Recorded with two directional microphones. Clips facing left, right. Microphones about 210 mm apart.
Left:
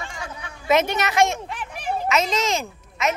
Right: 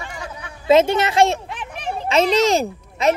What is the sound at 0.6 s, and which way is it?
A woman's voice, 30° right (ahead or behind).